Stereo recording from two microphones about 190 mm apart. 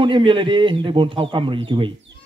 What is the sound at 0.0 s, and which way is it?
Speech, 25° right (ahead or behind).